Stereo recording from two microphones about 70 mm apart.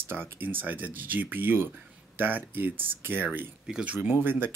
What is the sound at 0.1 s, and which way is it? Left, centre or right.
Speech, right.